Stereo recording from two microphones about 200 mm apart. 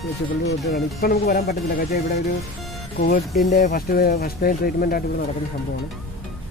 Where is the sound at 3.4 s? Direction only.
40° left (ahead or behind).